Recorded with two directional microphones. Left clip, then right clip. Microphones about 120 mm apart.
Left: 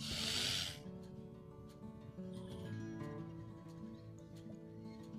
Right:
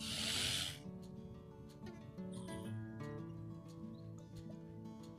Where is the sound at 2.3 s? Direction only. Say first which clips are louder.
Right 2 dB; 5° right (ahead or behind).